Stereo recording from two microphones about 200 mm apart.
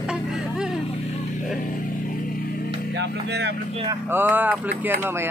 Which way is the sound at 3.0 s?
55° right (ahead or behind).